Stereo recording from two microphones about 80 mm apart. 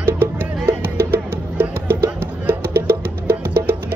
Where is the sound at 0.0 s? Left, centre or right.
Right.